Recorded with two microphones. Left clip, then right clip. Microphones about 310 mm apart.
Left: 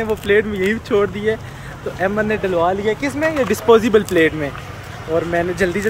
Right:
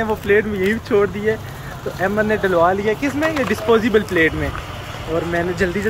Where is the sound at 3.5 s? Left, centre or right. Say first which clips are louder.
Left 5 dB; left.